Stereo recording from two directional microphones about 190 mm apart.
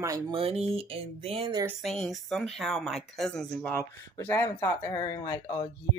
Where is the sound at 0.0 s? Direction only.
20° right (ahead or behind).